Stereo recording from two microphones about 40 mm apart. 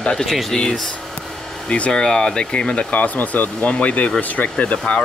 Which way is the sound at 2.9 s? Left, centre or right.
Left.